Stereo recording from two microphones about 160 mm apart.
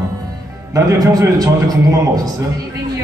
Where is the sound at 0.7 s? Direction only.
20° right (ahead or behind).